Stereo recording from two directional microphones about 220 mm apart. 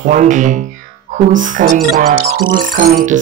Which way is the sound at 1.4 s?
35° right (ahead or behind).